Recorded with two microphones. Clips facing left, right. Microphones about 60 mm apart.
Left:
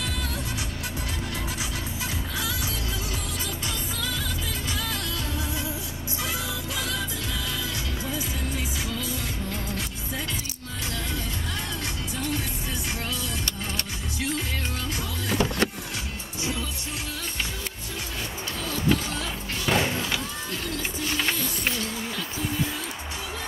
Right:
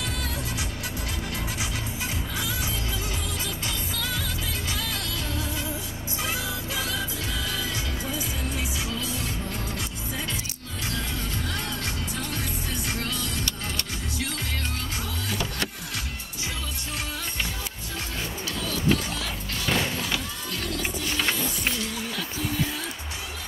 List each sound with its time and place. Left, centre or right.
15.2 s music: left
18.6 s music: left
19.6 s a sound: centre